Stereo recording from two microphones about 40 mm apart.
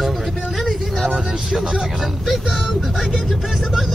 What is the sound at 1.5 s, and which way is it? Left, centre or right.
Speech, centre.